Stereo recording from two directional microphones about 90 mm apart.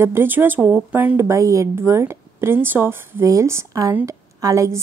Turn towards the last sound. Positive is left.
turn(degrees=-35)  # may be behind; listen again after turning